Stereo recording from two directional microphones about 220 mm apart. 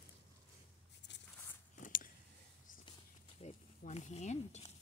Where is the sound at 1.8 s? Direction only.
40° left (ahead or behind).